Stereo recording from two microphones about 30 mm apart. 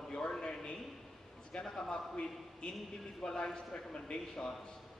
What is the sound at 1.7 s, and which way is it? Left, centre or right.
Speech, left.